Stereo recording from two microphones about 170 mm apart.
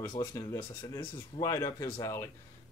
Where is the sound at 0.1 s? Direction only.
25° left (ahead or behind).